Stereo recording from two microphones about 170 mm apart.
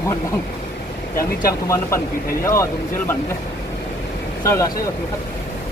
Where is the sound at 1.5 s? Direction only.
20° left (ahead or behind).